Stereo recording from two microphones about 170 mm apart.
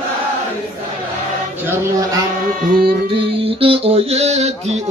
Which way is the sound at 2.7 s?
65° right (ahead or behind).